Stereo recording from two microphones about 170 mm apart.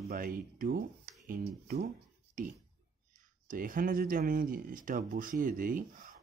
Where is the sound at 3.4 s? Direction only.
55° right (ahead or behind).